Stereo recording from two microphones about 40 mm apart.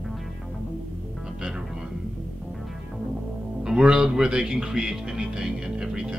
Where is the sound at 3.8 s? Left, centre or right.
Centre.